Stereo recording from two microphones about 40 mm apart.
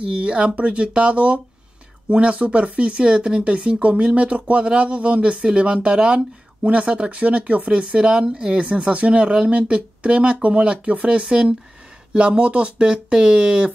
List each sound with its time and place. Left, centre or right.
0.0 s speech: right
7.8 s speech: right